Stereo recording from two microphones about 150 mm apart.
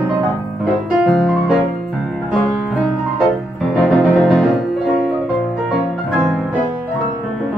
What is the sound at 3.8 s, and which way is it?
Music, centre (ahead or behind).